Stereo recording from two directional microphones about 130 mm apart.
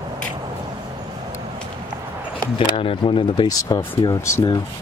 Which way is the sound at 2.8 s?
40° left (ahead or behind).